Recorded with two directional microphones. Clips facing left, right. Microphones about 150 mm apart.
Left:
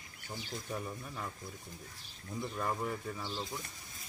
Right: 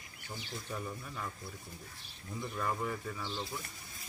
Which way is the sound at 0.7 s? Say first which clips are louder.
Even; 20° left (ahead or behind).